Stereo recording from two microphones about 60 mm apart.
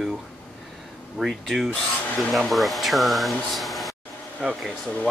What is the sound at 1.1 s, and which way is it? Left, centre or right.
Speech, centre.